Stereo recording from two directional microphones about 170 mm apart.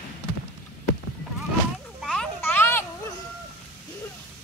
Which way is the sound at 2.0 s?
5° left (ahead or behind).